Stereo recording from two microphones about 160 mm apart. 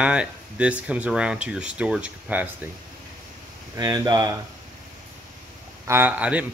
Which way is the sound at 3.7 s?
25° right (ahead or behind).